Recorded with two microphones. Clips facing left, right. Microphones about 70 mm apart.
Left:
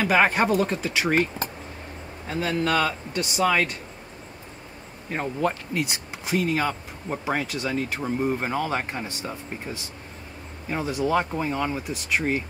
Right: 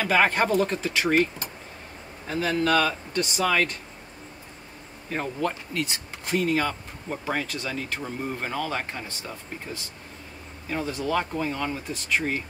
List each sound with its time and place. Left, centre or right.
0.0 s speech: centre
2.2 s speech: centre
5.1 s speech: centre
10.7 s speech: centre